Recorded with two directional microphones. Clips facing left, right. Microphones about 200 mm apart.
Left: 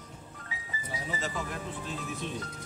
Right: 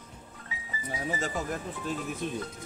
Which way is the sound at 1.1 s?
45° right (ahead or behind).